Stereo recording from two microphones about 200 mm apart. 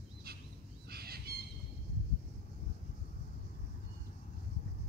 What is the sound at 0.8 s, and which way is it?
Bird, 50° right (ahead or behind).